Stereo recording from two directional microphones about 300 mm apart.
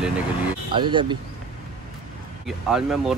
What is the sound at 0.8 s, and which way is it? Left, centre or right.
Speech, centre.